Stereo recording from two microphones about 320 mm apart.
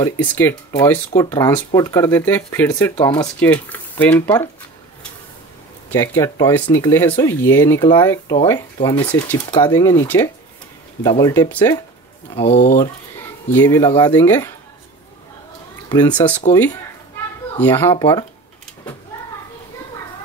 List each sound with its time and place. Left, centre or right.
0.0 s speech: centre
5.9 s speech: centre
13.5 s speech: centre
15.9 s speech: centre
17.6 s speech: centre